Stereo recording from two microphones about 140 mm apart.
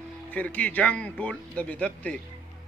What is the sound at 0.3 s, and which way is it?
A man's voice, 10° left (ahead or behind).